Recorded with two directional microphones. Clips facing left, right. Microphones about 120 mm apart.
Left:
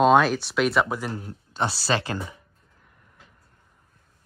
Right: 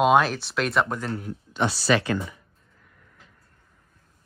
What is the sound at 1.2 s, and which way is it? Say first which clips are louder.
Speech: right 2 dB; 35° left (ahead or behind).